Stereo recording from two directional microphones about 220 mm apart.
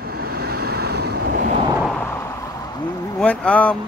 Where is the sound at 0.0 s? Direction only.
45° right (ahead or behind).